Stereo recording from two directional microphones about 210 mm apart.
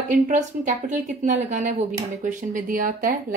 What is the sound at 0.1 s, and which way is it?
Speech, 35° right (ahead or behind).